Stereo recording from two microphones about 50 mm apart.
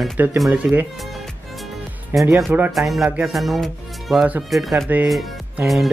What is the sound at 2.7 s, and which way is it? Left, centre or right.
Speech, centre.